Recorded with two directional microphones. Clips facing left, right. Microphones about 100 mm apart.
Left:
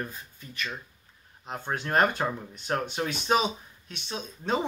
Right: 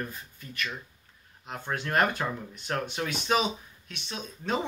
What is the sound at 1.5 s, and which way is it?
Speech, 30° left (ahead or behind).